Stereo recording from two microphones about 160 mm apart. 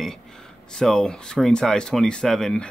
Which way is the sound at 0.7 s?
5° left (ahead or behind).